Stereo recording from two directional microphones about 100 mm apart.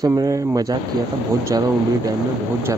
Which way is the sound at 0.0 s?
35° right (ahead or behind).